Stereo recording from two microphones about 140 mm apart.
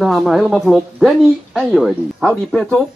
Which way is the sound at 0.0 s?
Centre (ahead or behind).